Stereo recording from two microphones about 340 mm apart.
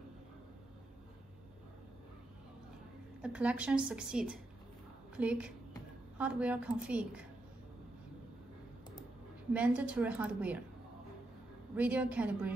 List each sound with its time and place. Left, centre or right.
3.2 s a woman's voice: centre
9.5 s a woman's voice: centre
11.7 s a woman's voice: centre